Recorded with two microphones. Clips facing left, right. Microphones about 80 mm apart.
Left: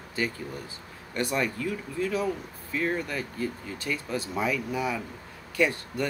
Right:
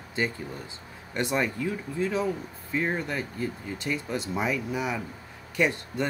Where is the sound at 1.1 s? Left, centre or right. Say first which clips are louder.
Right 1 dB; right.